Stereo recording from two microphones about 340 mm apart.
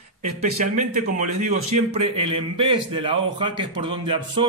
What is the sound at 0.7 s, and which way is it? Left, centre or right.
A man's voice, right.